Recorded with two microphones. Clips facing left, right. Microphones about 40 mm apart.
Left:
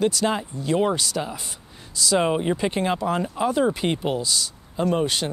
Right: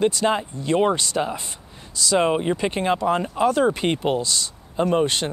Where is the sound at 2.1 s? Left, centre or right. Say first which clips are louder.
Right 2 dB; centre.